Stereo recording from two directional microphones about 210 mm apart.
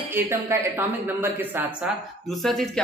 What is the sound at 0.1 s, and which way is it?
Speech, 10° right (ahead or behind).